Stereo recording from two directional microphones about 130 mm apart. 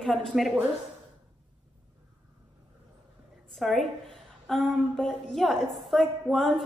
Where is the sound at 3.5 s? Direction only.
Centre (ahead or behind).